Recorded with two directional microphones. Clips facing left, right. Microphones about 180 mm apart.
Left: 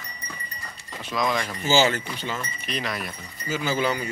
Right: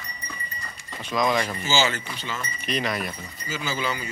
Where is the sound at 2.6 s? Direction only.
Centre (ahead or behind).